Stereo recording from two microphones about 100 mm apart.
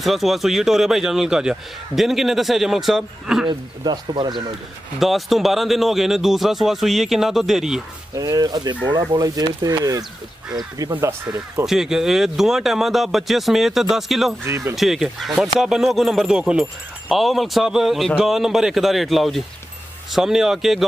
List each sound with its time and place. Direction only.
0.0 s a man's voice: centre (ahead or behind)
3.4 s speech: 50° right (ahead or behind)
5.0 s a man's voice: centre (ahead or behind)
8.1 s speech: 35° right (ahead or behind)
11.6 s a man's voice: 5° right (ahead or behind)
14.4 s speech: 25° right (ahead or behind)
14.8 s a man's voice: centre (ahead or behind)